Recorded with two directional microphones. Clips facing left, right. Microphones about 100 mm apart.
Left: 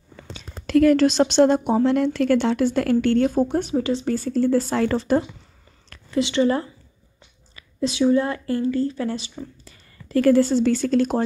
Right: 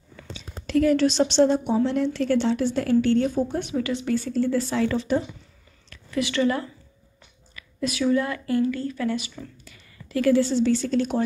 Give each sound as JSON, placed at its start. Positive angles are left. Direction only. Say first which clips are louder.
{"t": 0.6, "sound": "a sound", "louder": "left 5 dB", "side_deg": 65}
{"t": 1.2, "sound": "a woman's voice", "louder": "left 3 dB", "side_deg": 55}
{"t": 3.5, "sound": "speech", "louder": "left 4 dB", "side_deg": 35}
{"t": 6.0, "sound": "a woman's voice", "louder": "left 3 dB", "side_deg": 25}